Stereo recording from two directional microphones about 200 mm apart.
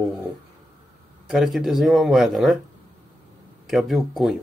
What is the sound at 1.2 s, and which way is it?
Speech, centre (ahead or behind).